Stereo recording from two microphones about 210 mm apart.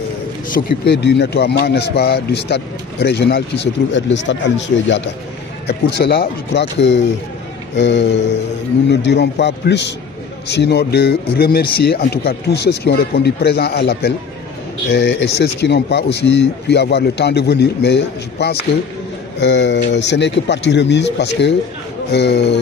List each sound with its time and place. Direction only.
0.6 s a man's voice: 50° left (ahead or behind)